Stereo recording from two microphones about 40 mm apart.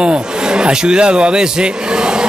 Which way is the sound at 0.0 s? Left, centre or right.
Right.